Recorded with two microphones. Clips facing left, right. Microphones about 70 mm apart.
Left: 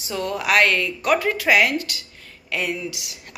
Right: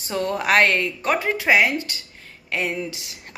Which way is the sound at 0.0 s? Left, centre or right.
Right.